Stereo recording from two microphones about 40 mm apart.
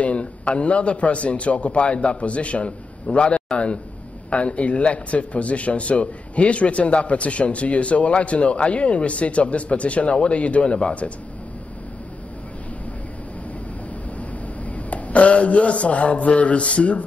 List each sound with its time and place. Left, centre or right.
0.0 s speech: left
14.6 s speech: left